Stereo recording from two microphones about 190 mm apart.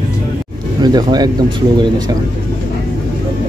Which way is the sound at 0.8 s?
20° right (ahead or behind).